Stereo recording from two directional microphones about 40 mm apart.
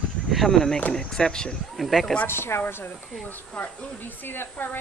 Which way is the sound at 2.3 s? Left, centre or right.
Left.